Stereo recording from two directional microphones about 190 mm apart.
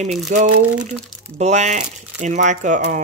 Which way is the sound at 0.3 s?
40° right (ahead or behind).